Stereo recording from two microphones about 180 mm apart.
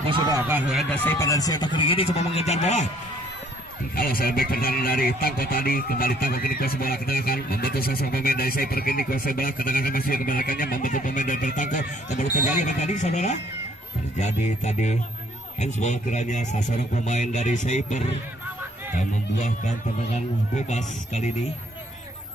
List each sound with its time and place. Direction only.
0.0 s speech: 25° right (ahead or behind)
0.4 s speech: 10° right (ahead or behind)
0.9 s speech: 15° left (ahead or behind); by 2.9 s 40° left (ahead or behind)
3.9 s a man's voice: 55° left (ahead or behind)